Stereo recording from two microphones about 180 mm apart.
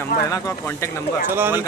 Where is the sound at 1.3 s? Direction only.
10° right (ahead or behind).